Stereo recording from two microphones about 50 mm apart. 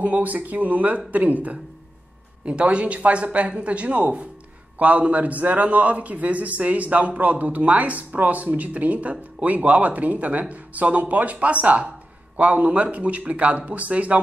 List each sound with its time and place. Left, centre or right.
0.0 s a man's voice: right